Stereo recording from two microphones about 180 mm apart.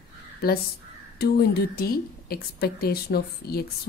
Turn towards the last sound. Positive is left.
turn(degrees=60)  # may be behind; listen again after turning